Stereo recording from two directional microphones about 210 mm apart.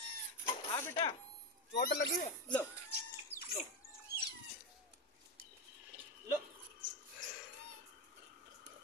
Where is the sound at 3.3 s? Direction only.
10° left (ahead or behind).